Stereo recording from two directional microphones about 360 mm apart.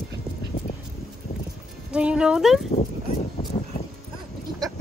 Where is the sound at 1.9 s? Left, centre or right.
Centre.